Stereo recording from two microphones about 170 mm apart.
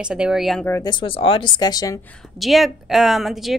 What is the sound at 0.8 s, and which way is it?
Speech, 25° left (ahead or behind).